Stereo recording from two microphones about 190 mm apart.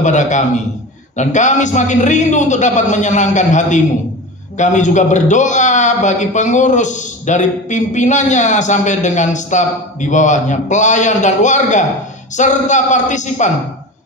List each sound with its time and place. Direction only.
0.0 s a man's voice: 40° left (ahead or behind)